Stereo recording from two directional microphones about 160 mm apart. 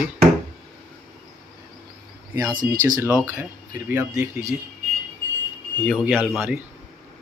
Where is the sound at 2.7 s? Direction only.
15° right (ahead or behind).